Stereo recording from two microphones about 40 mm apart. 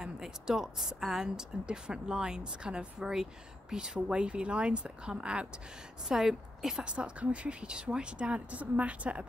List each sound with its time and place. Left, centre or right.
0.0 s a woman's voice: centre
6.0 s a woman's voice: centre
6.8 s speech: right